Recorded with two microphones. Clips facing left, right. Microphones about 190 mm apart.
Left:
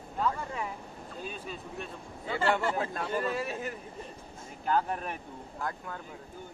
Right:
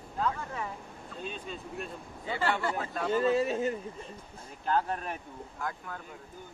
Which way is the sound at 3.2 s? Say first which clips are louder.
Right 6 dB; 25° right (ahead or behind).